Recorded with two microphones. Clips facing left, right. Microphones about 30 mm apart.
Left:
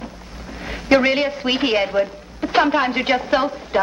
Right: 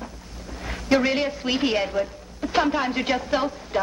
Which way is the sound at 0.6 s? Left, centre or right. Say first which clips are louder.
Left 5 dB; left.